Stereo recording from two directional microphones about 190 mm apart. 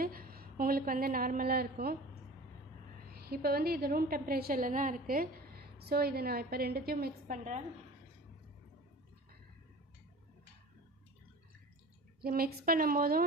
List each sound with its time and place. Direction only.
0.0 s a woman's voice: 50° right (ahead or behind)
3.1 s a woman's voice: 55° right (ahead or behind)
12.2 s a woman's voice: 50° right (ahead or behind)